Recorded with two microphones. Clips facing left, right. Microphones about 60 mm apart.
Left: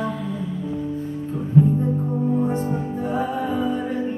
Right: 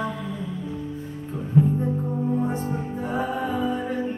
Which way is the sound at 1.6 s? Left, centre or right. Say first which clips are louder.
Left 3 dB; centre.